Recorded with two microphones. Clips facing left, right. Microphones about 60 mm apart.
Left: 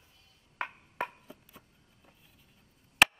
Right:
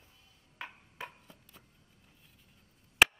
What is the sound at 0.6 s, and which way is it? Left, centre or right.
Chop, left.